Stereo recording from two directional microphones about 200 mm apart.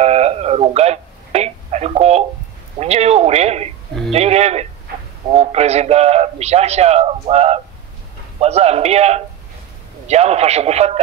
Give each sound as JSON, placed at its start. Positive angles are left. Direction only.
{"t": 0.0, "sound": "radio", "side_deg": -30}
{"t": 2.8, "sound": "a man's voice", "side_deg": -30}